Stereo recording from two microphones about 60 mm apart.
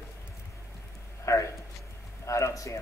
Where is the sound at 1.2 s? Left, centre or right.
Left.